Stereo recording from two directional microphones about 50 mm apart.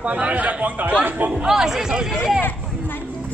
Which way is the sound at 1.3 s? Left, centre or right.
Centre.